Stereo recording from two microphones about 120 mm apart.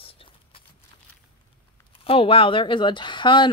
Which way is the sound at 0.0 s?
50° left (ahead or behind).